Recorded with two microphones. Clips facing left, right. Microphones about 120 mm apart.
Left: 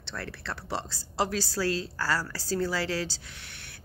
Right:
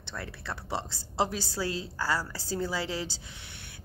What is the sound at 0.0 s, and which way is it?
A woman's voice, 15° right (ahead or behind).